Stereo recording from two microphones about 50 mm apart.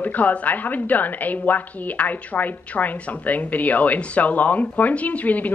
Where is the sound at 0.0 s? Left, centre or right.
Left.